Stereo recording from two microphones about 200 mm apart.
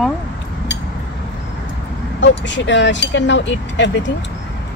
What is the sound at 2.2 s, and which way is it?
Speech, 65° left (ahead or behind).